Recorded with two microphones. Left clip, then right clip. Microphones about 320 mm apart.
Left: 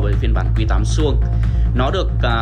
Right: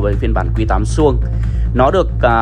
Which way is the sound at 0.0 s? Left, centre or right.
Centre.